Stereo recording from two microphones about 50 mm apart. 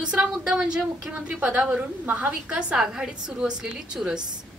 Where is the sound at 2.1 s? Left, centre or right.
Right.